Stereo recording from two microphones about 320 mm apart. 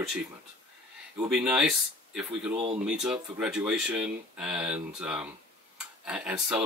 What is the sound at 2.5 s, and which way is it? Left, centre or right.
Speech, centre.